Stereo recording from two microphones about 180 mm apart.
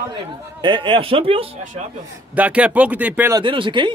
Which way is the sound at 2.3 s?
10° right (ahead or behind).